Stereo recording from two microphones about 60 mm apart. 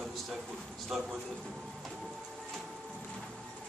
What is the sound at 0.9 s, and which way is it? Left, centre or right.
Speech, centre.